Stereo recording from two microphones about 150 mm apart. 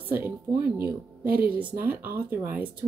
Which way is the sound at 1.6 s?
10° right (ahead or behind).